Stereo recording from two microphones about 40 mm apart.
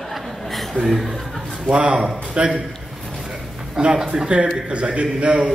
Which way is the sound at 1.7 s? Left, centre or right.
Right.